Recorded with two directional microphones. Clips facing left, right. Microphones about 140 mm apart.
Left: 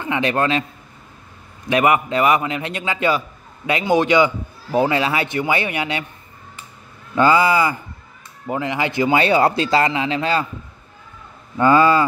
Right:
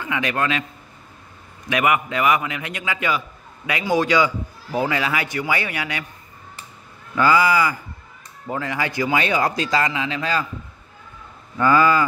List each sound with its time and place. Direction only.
0.0 s a man's voice: 30° left (ahead or behind)
1.7 s a man's voice: 30° left (ahead or behind)
7.2 s a man's voice: 25° left (ahead or behind)
11.5 s a man's voice: 25° left (ahead or behind)